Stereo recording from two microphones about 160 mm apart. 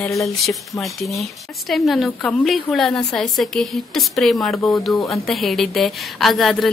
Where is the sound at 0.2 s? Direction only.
Centre (ahead or behind).